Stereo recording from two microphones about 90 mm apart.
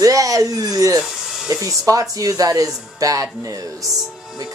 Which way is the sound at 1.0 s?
5° right (ahead or behind).